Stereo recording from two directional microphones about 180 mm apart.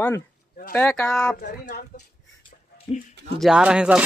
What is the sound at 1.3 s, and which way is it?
Speech, 55° left (ahead or behind).